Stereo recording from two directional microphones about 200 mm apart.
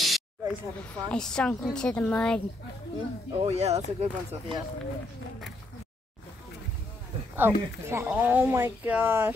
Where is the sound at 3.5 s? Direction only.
30° right (ahead or behind).